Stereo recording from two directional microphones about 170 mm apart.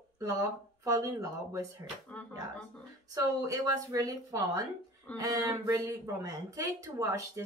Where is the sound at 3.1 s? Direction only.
20° right (ahead or behind).